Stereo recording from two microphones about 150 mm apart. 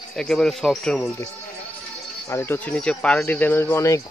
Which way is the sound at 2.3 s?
15° left (ahead or behind).